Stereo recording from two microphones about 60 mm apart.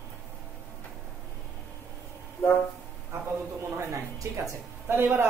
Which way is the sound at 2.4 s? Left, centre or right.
Left.